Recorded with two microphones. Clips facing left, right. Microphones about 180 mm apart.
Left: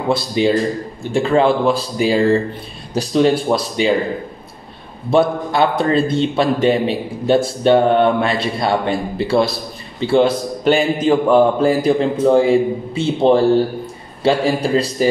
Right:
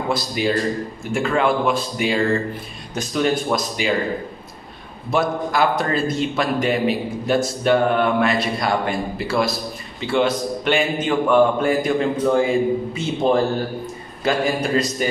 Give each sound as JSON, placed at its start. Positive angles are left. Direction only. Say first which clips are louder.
{"t": 0.1, "sound": "a man's voice", "louder": "left 6 dB", "side_deg": 25}
{"t": 5.1, "sound": "a man's voice", "louder": "left 5 dB", "side_deg": 30}